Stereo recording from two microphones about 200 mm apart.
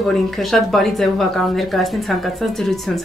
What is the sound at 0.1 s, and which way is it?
Speech, centre (ahead or behind).